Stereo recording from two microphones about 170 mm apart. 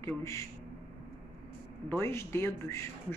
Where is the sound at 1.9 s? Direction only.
15° left (ahead or behind).